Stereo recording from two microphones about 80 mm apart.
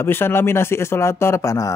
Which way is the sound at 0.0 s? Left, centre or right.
Left.